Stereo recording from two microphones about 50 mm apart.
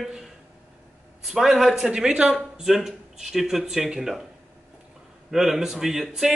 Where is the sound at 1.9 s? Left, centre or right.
Centre.